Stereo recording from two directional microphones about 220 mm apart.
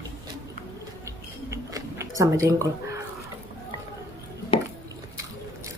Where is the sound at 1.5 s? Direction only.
15° right (ahead or behind).